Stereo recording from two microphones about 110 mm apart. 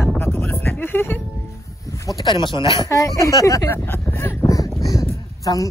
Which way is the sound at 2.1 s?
45° left (ahead or behind).